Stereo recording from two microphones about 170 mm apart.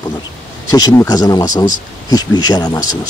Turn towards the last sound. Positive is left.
turn(degrees=25)  # may be behind; listen again after turning